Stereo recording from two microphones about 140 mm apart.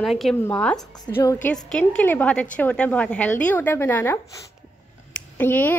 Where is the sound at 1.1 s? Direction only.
25° left (ahead or behind).